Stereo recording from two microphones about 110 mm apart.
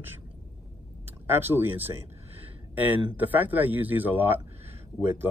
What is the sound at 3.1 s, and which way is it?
Speech, 15° right (ahead or behind).